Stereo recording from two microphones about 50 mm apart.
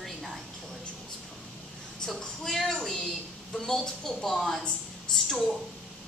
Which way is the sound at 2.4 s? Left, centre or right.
Centre.